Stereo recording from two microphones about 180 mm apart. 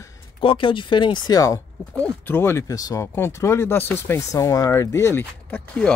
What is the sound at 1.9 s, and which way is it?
Speech, 10° left (ahead or behind).